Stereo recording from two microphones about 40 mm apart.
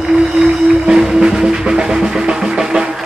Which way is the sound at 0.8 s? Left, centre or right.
Centre.